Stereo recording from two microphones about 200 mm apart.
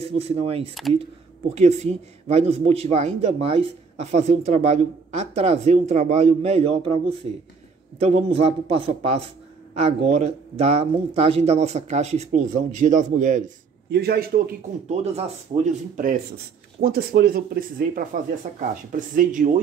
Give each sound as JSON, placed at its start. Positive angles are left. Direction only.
{"t": 0.2, "sound": "a man's voice", "side_deg": -30}
{"t": 13.8, "sound": "speech", "side_deg": -55}
{"t": 14.9, "sound": "a man's voice", "side_deg": -30}
{"t": 16.8, "sound": "speech", "side_deg": -50}